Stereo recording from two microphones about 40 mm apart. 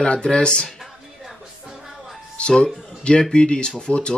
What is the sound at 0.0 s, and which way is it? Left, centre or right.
Speech, left.